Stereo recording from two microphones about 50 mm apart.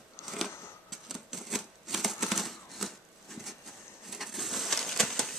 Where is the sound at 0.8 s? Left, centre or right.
Centre.